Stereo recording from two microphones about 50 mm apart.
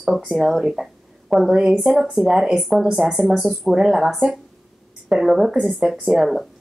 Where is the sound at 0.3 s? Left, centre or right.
Centre.